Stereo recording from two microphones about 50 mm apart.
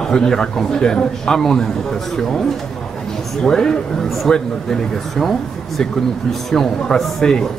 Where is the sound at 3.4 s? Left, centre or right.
Centre.